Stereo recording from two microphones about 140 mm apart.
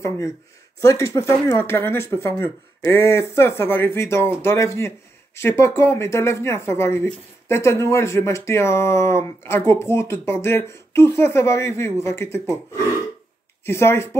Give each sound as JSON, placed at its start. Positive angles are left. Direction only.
{"t": 0.7, "sound": "speech", "side_deg": 20}
{"t": 13.7, "sound": "speech", "side_deg": 15}